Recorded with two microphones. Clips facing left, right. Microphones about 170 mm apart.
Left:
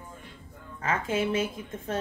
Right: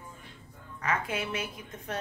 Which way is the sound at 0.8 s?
25° left (ahead or behind).